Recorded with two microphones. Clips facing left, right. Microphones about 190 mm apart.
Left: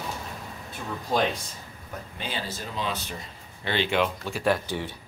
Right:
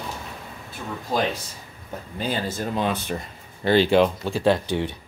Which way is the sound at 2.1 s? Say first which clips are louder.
Right 8 dB; 45° right (ahead or behind).